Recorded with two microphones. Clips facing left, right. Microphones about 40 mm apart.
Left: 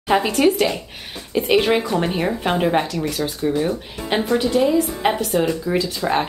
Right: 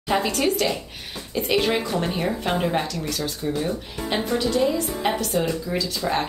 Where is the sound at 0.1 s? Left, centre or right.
Centre.